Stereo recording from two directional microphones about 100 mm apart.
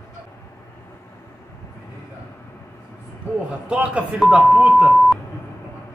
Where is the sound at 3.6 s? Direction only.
15° right (ahead or behind).